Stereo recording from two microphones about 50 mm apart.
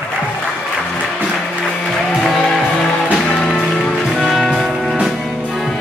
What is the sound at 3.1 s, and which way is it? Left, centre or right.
Music, centre.